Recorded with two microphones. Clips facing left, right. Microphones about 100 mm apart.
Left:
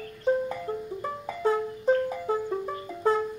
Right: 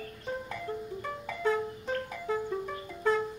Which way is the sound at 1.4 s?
30° left (ahead or behind).